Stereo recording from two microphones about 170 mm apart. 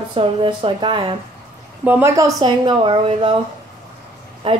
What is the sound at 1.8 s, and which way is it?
Speech, 15° right (ahead or behind).